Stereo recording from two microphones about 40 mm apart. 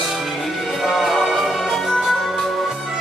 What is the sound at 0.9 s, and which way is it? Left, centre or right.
Music, centre.